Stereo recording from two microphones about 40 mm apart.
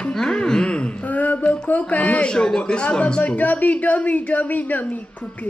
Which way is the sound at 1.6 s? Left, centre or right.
Left.